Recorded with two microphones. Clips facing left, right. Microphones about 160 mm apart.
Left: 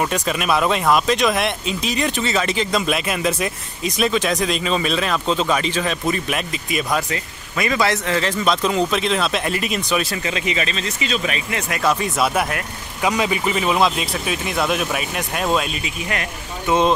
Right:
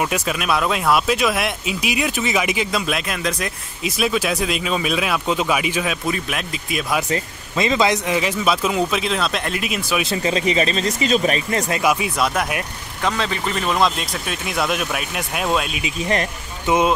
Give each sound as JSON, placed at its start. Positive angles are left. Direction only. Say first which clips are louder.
{"t": 0.0, "sound": "speech", "louder": "left 1 dB", "side_deg": -5}
{"t": 7.1, "sound": "speech", "louder": "right 4 dB", "side_deg": -25}
{"t": 10.0, "sound": "speech", "louder": "right 4 dB", "side_deg": -30}
{"t": 11.8, "sound": "speech", "louder": "left 2 dB", "side_deg": -10}
{"t": 13.0, "sound": "speech", "louder": "left 3 dB", "side_deg": 10}
{"t": 16.6, "sound": "speech", "louder": "even", "side_deg": -15}